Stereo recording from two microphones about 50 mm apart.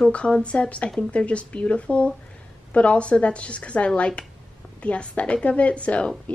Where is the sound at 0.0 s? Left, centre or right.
Centre.